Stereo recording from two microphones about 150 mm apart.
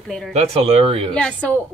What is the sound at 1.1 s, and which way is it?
Speech, 5° left (ahead or behind).